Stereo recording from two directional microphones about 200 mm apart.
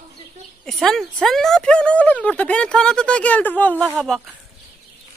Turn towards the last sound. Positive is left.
turn(degrees=0)  # may be behind; listen again after turning